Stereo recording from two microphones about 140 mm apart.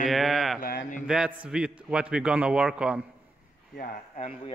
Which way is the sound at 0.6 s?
90° left.